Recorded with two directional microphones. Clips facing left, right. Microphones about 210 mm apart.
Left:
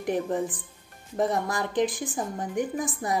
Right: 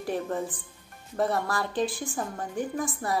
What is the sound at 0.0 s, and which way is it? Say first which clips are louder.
Speech: left 3 dB; 15° left (ahead or behind).